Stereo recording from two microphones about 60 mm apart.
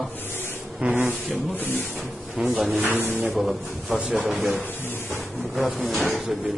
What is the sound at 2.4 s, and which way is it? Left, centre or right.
Speech, centre.